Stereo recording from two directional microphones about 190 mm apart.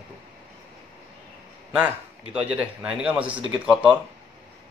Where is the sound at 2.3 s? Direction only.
5° right (ahead or behind).